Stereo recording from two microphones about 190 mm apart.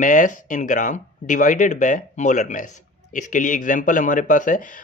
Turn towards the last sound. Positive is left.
turn(degrees=45)  # may be behind; listen again after turning